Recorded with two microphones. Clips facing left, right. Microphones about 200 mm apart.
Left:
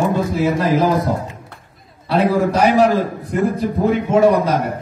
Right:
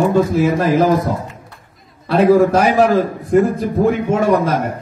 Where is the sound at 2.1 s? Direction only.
50° right (ahead or behind).